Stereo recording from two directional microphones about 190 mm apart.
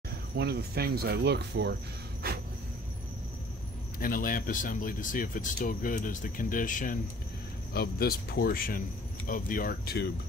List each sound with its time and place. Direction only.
0.4 s speech: 60° right (ahead or behind)
2.2 s a sound: 55° right (ahead or behind)
4.0 s speech: 45° left (ahead or behind)
7.7 s speech: 55° left (ahead or behind)